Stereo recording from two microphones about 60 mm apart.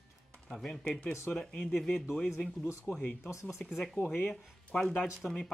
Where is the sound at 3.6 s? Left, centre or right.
Left.